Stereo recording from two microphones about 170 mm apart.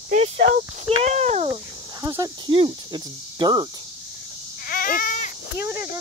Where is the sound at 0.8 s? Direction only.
40° right (ahead or behind).